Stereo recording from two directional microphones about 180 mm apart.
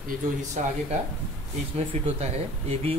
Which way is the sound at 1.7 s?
35° right (ahead or behind).